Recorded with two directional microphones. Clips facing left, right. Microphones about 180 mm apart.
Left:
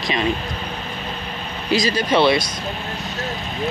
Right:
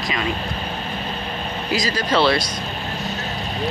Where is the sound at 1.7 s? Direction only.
25° left (ahead or behind).